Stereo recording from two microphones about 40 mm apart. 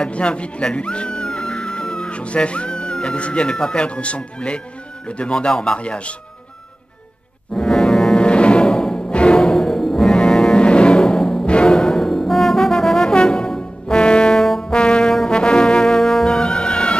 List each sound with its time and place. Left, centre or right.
0.0 s speech: left
7.5 s music: centre
8.2 s music: left
8.9 s music: left; by 10.0 s centre
10.0 s music: centre
13.1 s brass instrument: centre
14.3 s brass instrument: centre
14.7 s brass instrument: left
16.3 s music: left